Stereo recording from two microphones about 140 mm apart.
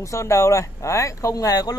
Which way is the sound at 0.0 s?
20° left (ahead or behind).